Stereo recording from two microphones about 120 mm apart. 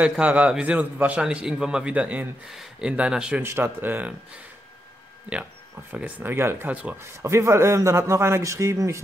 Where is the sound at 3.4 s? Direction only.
20° right (ahead or behind).